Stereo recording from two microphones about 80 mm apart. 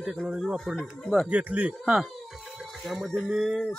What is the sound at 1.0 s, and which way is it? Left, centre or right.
Speech, centre.